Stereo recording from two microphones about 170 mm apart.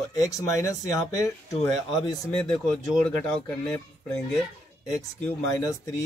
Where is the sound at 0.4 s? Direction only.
20° left (ahead or behind).